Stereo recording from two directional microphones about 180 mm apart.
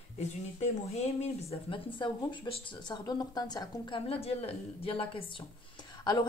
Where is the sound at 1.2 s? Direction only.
30° left (ahead or behind).